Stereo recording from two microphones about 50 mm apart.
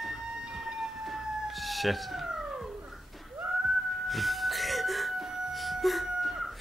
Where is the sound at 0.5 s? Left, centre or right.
Centre.